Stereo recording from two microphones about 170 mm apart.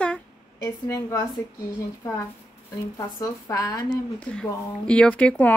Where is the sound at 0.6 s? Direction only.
20° left (ahead or behind).